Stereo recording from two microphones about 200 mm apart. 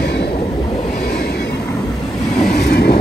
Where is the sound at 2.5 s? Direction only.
55° left (ahead or behind).